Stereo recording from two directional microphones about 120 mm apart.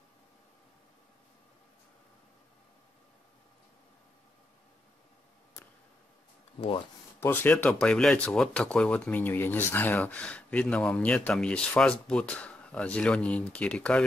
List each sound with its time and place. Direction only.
7.2 s speech: 15° left (ahead or behind)